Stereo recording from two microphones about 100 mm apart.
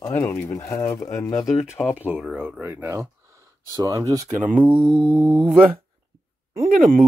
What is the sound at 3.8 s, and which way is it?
Speech, 35° right (ahead or behind).